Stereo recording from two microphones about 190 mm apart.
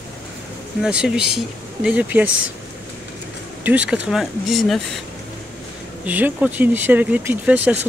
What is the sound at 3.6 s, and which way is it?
Speech, 10° right (ahead or behind).